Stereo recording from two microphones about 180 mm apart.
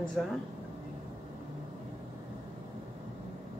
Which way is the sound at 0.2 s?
5° right (ahead or behind).